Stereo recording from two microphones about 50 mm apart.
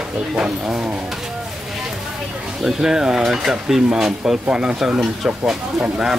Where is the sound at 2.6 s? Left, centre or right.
Centre.